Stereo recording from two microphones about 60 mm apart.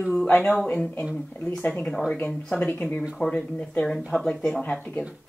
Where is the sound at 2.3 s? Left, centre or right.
Centre.